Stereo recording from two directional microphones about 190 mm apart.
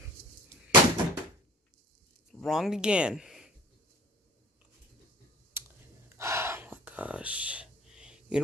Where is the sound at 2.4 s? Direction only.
Centre (ahead or behind).